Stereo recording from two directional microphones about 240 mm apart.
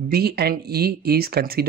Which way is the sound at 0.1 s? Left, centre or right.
Right.